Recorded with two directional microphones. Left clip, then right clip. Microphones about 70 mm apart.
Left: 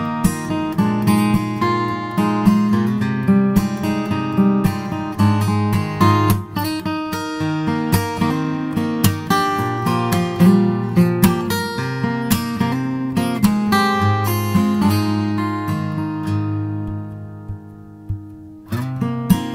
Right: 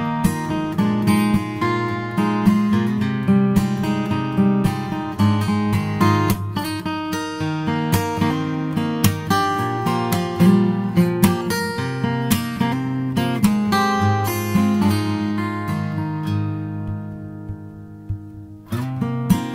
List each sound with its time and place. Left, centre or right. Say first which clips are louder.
0.0 s music: even; left
18.9 s music: left 2 dB; left